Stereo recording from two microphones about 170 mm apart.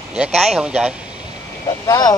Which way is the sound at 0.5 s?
5° right (ahead or behind).